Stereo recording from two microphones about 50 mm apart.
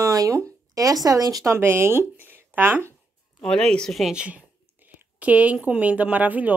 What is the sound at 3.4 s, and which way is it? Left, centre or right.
Speech, centre.